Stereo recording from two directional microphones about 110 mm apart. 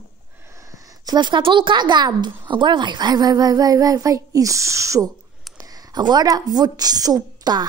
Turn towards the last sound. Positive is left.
turn(degrees=-35)  # may be behind; listen again after turning